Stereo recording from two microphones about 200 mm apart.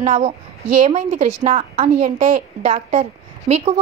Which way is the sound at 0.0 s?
35° right (ahead or behind).